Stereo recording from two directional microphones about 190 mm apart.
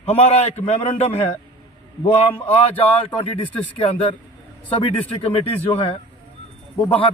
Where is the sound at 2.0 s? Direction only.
30° left (ahead or behind).